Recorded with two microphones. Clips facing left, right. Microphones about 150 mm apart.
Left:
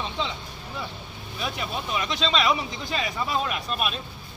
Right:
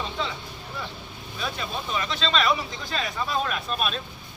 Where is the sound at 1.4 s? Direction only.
15° left (ahead or behind).